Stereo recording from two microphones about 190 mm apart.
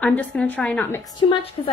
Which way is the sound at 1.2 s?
25° left (ahead or behind).